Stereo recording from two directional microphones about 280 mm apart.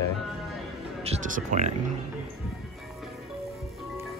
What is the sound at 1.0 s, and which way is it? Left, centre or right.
Speech, right.